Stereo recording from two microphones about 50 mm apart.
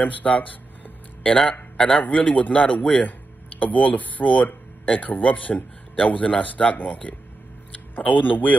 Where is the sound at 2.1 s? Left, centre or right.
Left.